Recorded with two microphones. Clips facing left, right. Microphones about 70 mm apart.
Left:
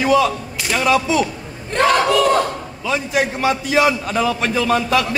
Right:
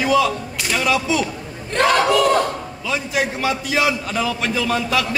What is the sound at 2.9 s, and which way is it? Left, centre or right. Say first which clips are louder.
A man's voice: left 3 dB; left.